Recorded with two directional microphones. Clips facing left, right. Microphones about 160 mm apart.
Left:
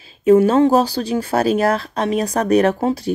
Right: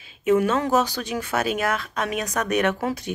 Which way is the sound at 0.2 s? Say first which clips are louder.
Left 8 dB; 35° left (ahead or behind).